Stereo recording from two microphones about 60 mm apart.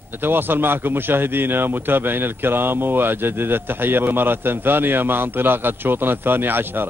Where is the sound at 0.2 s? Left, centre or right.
Right.